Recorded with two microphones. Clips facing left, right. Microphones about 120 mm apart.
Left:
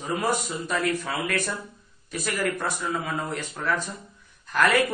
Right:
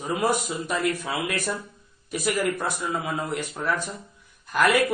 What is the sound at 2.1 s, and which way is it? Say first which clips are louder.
Speech: right 3 dB; 15° right (ahead or behind).